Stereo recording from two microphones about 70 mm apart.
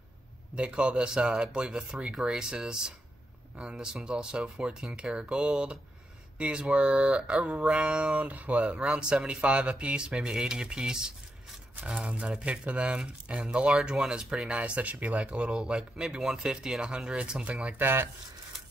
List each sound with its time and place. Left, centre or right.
0.6 s speech: centre
17.8 s speech: right